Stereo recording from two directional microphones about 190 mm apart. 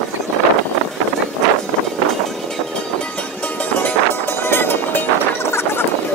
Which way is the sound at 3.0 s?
5° left (ahead or behind).